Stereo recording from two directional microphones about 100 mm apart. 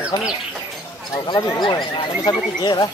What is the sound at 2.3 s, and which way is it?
Speech, 40° left (ahead or behind).